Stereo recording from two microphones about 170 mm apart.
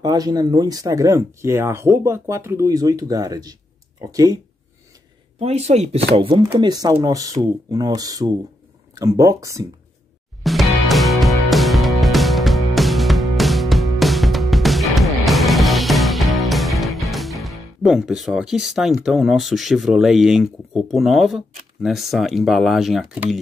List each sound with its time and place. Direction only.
0.0 s speech: 25° right (ahead or behind)
5.4 s speech: 35° right (ahead or behind); by 9.7 s 20° right (ahead or behind)
10.4 s music: centre (ahead or behind)
19.0 s speech: centre (ahead or behind)